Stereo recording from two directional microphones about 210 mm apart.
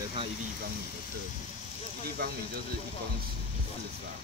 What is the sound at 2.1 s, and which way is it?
Speech, 45° right (ahead or behind).